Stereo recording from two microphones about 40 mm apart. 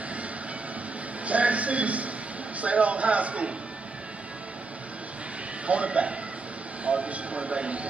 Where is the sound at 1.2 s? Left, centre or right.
Right.